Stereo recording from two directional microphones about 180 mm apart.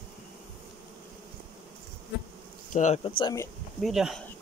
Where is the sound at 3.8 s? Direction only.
Centre (ahead or behind).